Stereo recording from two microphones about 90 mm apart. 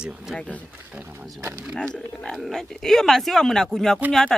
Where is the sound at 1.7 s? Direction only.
10° left (ahead or behind).